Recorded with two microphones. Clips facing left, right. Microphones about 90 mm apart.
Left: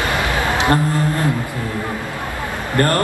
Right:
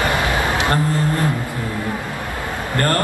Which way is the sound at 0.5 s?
20° left (ahead or behind).